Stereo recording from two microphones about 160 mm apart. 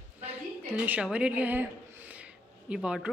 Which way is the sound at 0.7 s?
10° right (ahead or behind).